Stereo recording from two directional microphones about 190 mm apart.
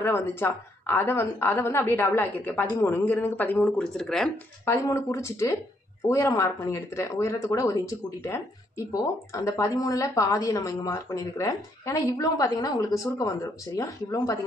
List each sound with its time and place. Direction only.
0.0 s speech: 10° left (ahead or behind)
4.6 s speech: 15° left (ahead or behind)